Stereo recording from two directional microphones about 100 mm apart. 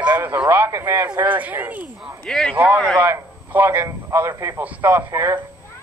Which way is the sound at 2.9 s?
20° right (ahead or behind).